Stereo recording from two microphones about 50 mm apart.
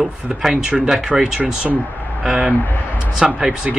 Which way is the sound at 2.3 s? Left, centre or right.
Right.